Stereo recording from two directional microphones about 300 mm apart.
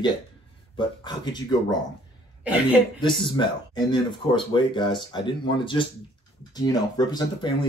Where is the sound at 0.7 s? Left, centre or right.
Centre.